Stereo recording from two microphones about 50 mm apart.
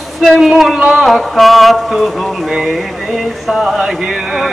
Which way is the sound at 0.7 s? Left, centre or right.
Right.